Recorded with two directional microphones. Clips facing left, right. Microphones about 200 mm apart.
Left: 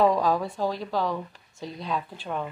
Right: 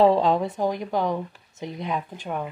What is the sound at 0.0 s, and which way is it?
A woman's voice, 25° right (ahead or behind).